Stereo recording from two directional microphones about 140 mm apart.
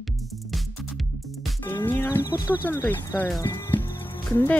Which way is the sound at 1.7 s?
15° left (ahead or behind).